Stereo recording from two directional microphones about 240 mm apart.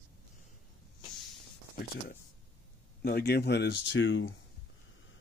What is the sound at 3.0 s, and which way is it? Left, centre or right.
Speech, left.